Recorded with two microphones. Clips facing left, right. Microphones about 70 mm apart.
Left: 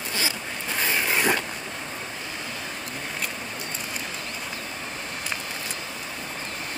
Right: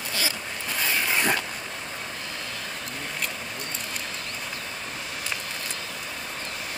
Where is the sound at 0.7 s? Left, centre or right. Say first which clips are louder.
Left 1 dB; left.